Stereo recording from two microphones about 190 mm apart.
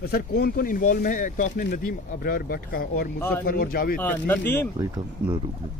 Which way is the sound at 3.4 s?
50° left (ahead or behind).